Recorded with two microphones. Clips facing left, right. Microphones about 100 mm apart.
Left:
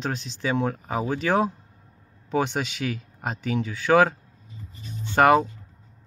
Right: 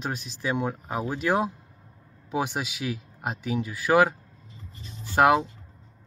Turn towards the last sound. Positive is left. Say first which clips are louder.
# left 2 dB
turn(degrees=-5)  # may be behind; listen again after turning